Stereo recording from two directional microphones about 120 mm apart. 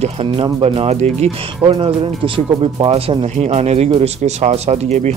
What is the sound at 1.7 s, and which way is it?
Speech, 45° right (ahead or behind).